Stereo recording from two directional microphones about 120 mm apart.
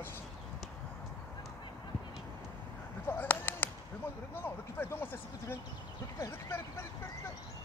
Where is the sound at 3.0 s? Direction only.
20° left (ahead or behind).